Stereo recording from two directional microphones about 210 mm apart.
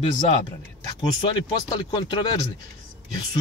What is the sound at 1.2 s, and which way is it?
Speech, 20° left (ahead or behind).